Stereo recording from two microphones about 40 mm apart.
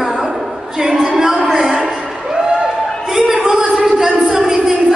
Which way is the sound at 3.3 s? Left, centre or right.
Centre.